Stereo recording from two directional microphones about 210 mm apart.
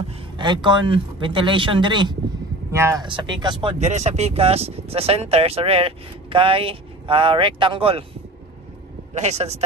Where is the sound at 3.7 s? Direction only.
30° right (ahead or behind).